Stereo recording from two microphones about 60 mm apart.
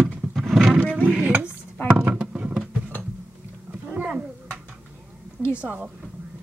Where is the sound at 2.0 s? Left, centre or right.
Right.